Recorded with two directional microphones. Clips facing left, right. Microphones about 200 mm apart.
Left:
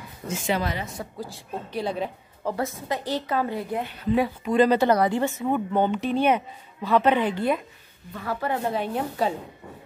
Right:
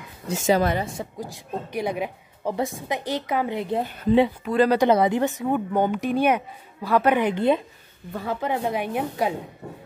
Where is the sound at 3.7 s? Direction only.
40° right (ahead or behind).